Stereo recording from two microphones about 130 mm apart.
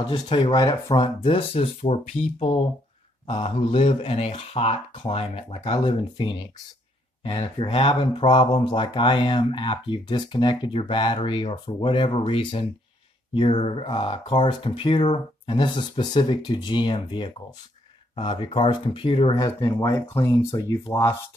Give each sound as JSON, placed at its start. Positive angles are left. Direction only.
{"t": 0.0, "sound": "speech", "side_deg": 40}
{"t": 19.3, "sound": "speech", "side_deg": 30}